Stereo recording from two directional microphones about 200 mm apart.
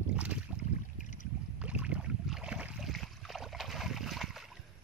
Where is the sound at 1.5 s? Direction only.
5° right (ahead or behind).